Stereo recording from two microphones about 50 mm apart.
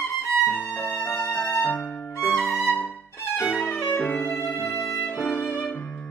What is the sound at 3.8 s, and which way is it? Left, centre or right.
Music, left.